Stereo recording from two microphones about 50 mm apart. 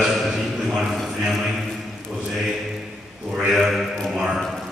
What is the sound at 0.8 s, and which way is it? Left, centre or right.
Speech, centre.